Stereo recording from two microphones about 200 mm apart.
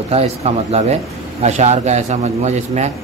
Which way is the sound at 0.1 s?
30° right (ahead or behind).